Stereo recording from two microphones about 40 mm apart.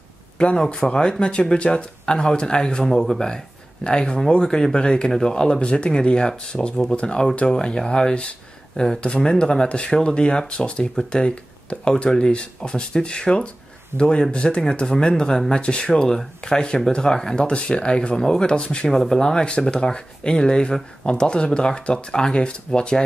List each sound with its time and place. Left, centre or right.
0.7 s speech: left
17.5 s speech: left
18.9 s speech: centre